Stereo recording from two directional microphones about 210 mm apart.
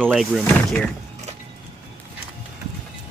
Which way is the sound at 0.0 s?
Centre (ahead or behind).